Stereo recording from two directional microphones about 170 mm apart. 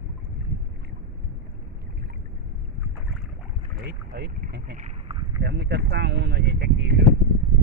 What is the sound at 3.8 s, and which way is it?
Speech, 75° right (ahead or behind).